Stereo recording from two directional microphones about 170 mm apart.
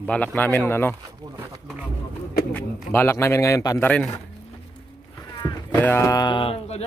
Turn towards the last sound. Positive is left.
turn(degrees=35)  # may be behind; listen again after turning